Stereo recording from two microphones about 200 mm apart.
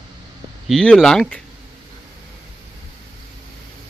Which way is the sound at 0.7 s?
Centre (ahead or behind).